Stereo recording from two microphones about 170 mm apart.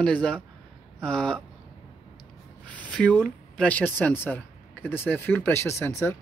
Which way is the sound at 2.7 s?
5° left (ahead or behind).